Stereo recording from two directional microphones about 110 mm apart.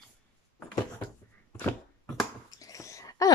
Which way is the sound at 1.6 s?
15° left (ahead or behind).